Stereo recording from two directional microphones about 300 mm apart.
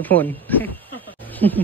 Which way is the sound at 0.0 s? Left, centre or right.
Centre.